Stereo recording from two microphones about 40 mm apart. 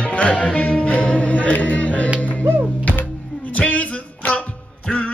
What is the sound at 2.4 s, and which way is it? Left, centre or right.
Music, right.